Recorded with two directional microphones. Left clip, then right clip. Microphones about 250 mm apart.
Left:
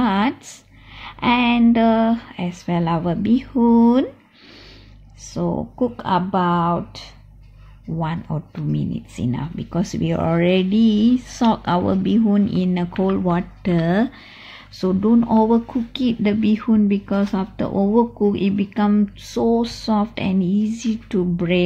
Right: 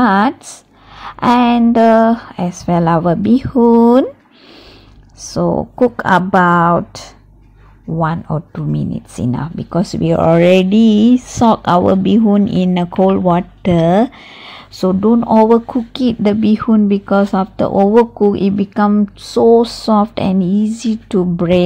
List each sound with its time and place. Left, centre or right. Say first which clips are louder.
0.0 s a sound: right 8 dB; right
2.0 s speech: right 8 dB; right
5.2 s speech: right 9 dB; right